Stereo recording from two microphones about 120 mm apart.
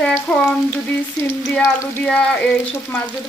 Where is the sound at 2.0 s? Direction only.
10° left (ahead or behind).